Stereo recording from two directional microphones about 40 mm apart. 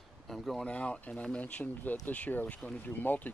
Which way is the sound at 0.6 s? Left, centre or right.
Left.